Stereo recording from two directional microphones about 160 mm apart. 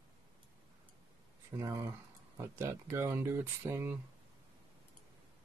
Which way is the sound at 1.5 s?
20° right (ahead or behind).